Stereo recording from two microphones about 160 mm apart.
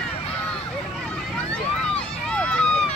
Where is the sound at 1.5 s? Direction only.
5° left (ahead or behind).